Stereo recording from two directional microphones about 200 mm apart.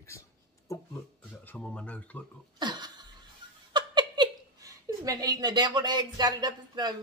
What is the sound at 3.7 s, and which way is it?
Speech, 20° right (ahead or behind).